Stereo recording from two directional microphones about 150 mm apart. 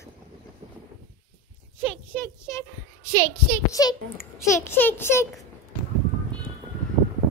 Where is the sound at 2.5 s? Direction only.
20° left (ahead or behind).